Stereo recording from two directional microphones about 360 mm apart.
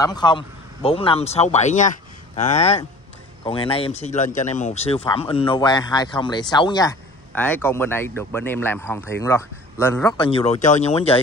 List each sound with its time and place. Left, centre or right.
0.0 s speech: centre